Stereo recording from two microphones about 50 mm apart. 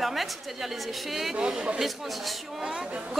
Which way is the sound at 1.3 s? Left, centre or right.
Centre.